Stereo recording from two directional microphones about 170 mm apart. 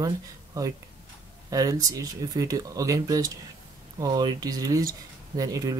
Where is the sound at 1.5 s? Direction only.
20° right (ahead or behind).